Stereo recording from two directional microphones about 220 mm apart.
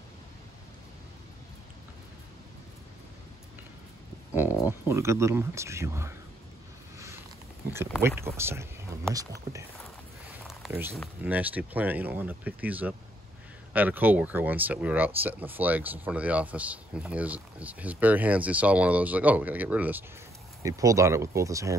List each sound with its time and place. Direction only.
4.3 s speech: 5° right (ahead or behind)
8.2 s speech: 10° right (ahead or behind)
11.2 s speech: 5° right (ahead or behind)